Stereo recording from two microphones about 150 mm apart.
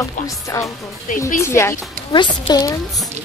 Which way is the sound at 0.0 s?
20° left (ahead or behind).